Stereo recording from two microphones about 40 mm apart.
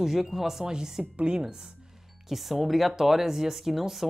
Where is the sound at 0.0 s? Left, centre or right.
Centre; by 1.4 s right.